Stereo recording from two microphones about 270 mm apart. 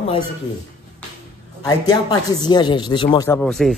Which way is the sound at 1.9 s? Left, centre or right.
Centre.